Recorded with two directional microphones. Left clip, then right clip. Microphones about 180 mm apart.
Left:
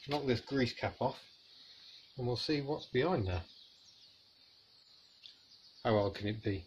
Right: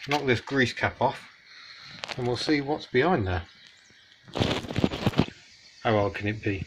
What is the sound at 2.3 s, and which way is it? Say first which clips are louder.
Speech: right 9 dB; 25° right (ahead or behind).